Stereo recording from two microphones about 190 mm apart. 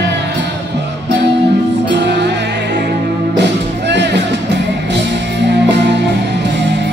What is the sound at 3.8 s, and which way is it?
Music, 65° right (ahead or behind).